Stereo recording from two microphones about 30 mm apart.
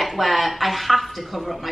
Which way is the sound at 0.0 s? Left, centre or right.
Centre.